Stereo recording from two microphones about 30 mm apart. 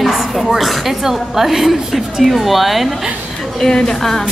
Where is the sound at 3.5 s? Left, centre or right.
Left.